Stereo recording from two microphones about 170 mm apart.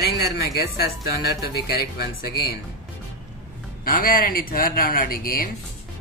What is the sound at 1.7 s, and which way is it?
Speech, 70° left (ahead or behind).